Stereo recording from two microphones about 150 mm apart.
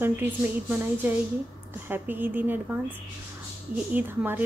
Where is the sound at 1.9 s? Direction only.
15° right (ahead or behind).